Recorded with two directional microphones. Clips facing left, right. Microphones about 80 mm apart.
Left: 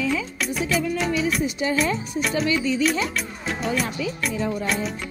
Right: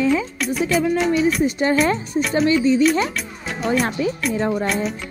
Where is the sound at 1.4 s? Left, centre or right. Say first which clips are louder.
Right 6 dB; right.